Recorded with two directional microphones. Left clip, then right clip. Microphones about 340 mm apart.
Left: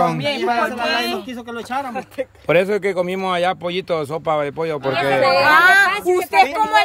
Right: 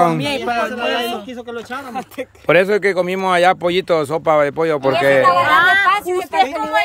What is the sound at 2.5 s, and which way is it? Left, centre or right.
Speech, centre.